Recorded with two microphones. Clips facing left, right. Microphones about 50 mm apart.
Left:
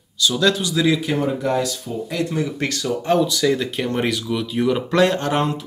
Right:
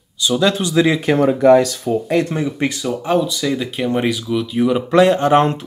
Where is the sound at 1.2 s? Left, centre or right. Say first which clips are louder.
Right 9 dB; right.